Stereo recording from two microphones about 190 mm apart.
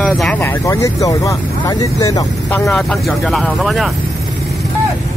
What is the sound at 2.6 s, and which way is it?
Speech, centre (ahead or behind).